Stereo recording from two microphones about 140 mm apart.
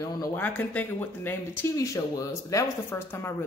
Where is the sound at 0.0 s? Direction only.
20° left (ahead or behind).